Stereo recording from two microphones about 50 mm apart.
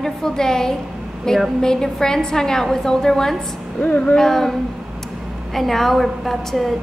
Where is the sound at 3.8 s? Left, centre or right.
Left.